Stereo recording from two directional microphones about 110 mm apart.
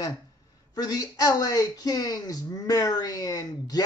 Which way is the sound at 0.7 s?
35° left (ahead or behind).